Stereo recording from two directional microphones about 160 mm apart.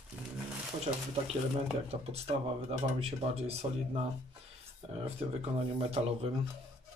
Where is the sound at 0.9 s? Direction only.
35° right (ahead or behind).